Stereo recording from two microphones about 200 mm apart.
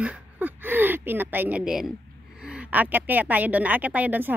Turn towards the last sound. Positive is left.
turn(degrees=-10)  # may be behind; listen again after turning